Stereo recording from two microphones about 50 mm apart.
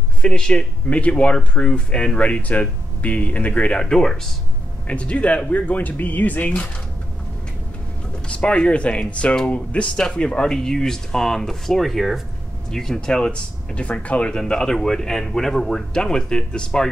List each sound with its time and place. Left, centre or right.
0.2 s speech: centre
2.1 s speech: left
3.8 s speech: centre
4.8 s speech: left
8.3 s speech: left
9.9 s speech: centre